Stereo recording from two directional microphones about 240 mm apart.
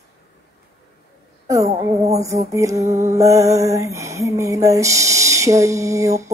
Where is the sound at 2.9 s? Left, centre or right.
Right.